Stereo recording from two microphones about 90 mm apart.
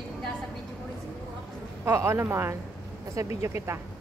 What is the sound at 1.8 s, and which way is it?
Speech, 30° right (ahead or behind).